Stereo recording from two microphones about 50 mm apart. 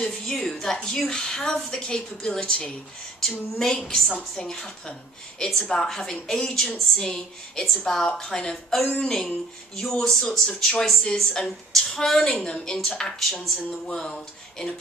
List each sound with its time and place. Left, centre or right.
0.3 s a woman's voice: centre
3.2 s a woman's voice: centre
8.8 s speech: left
9.8 s a woman's voice: centre